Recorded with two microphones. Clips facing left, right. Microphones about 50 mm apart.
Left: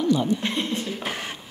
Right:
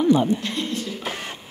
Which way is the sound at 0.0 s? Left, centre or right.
Right.